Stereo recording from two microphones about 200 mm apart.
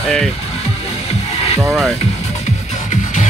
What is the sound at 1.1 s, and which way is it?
Music, 30° left (ahead or behind).